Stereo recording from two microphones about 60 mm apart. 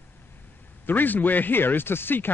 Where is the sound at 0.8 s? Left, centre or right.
Left.